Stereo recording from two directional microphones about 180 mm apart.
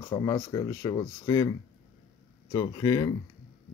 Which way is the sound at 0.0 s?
20° left (ahead or behind).